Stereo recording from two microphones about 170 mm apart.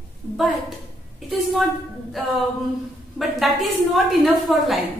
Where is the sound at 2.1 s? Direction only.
Centre (ahead or behind).